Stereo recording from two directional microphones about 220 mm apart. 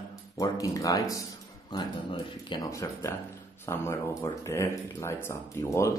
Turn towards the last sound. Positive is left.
turn(degrees=15)  # may be behind; listen again after turning